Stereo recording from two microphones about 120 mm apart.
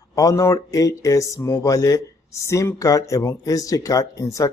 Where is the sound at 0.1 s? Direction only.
30° left (ahead or behind).